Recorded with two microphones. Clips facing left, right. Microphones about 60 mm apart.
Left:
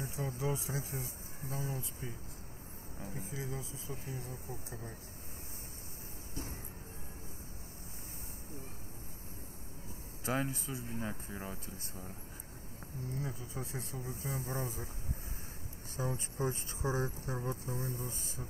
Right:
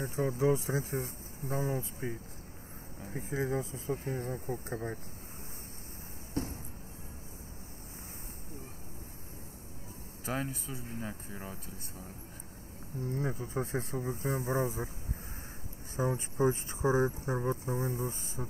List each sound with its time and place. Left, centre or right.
0.0 s speech: right
3.1 s speech: right
6.4 s music: right
10.2 s speech: centre
13.1 s speech: right
16.0 s speech: right
18.4 s speech: right